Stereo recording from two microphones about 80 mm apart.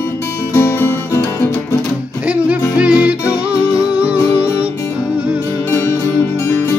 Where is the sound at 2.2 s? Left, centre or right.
Centre.